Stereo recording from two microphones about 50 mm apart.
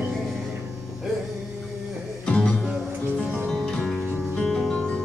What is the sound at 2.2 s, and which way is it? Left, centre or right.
Music, centre.